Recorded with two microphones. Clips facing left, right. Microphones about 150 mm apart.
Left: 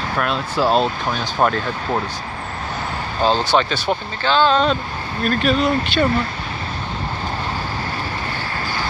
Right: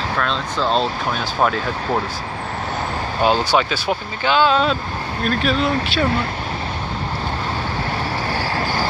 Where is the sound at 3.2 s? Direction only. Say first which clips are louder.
Even; 10° right (ahead or behind).